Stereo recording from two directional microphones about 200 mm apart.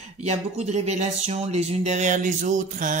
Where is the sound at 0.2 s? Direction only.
35° right (ahead or behind).